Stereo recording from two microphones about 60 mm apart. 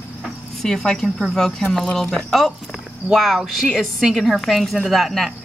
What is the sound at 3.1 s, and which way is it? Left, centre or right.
A woman's voice, centre.